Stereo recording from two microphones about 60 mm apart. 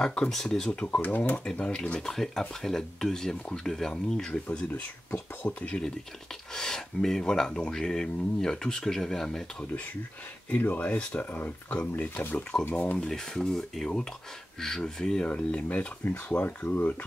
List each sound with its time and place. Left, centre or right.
0.0 s speech: centre
0.7 s speech: centre
4.3 s speech: left
6.5 s speech: centre
10.5 s speech: left
12.9 s speech: centre
15.2 s speech: left